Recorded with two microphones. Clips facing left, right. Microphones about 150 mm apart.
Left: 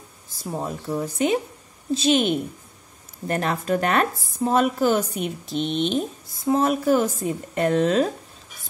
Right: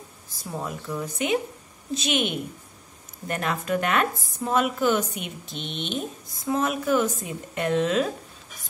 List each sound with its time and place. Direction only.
0.5 s speech: 30° left (ahead or behind)